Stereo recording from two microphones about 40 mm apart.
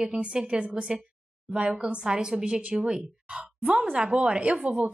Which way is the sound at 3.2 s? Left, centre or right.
Right.